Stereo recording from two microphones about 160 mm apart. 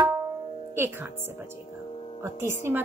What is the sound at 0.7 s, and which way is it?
Speech, 15° right (ahead or behind).